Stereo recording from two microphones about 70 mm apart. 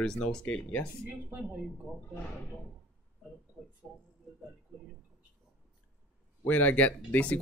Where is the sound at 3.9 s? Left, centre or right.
Centre.